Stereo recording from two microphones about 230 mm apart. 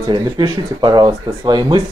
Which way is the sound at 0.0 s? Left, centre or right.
Centre.